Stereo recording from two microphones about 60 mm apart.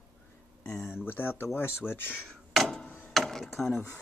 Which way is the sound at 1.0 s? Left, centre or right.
Left.